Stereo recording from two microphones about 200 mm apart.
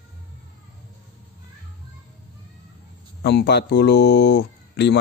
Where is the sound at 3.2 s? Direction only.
55° left (ahead or behind).